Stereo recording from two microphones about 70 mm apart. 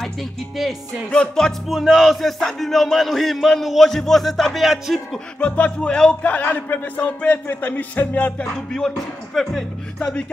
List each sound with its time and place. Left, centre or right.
0.0 s speech: centre
1.1 s speech: centre
1.7 s a sound: centre
5.4 s speech: centre
6.2 s music: left
8.5 s a sound: centre
9.9 s speech: centre